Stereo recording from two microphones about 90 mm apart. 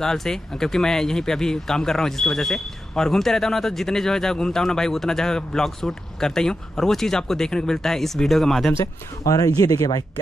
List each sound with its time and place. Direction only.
0.0 s speech: 5° left (ahead or behind)
8.7 s speech: 40° left (ahead or behind)